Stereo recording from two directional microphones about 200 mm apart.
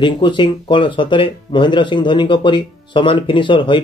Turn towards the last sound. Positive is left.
turn(degrees=25)  # may be behind; listen again after turning